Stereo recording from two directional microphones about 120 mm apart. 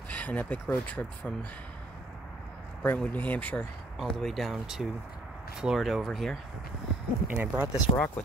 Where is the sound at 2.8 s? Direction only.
15° left (ahead or behind).